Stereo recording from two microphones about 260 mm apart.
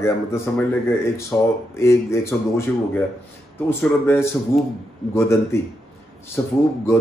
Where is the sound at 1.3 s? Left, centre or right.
Centre.